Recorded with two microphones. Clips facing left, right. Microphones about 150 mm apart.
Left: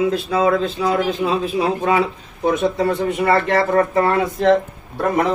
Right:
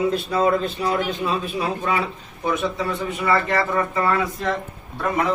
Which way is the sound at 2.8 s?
60° left (ahead or behind).